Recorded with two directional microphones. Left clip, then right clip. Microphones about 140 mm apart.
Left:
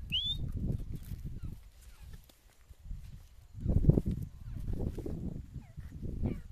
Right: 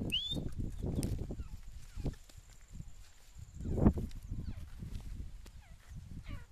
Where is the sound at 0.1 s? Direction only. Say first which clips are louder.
Left 3 dB; 5° left (ahead or behind).